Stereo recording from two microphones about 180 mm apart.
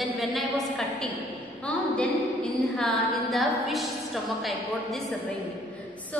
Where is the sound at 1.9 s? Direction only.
5° left (ahead or behind).